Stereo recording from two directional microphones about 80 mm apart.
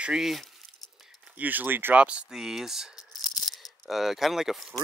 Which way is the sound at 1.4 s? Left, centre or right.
Right.